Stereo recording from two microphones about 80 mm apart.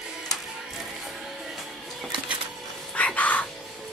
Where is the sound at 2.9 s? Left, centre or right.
Centre.